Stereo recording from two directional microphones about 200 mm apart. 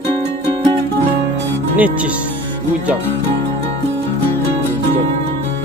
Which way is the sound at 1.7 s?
5° right (ahead or behind).